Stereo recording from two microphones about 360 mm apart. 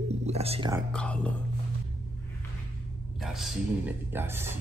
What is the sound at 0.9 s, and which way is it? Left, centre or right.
Speech, centre.